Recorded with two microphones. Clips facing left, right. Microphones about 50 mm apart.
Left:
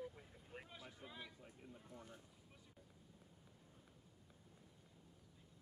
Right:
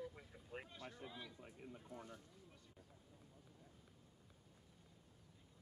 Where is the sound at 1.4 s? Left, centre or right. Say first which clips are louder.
Right 3 dB; right.